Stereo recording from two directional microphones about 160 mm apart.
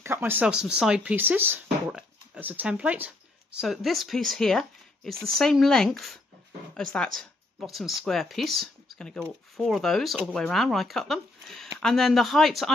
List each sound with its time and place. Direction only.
0.0 s speech: 15° right (ahead or behind)